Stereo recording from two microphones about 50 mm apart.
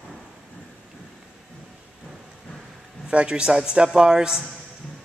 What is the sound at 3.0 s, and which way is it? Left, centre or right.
A man's voice, centre.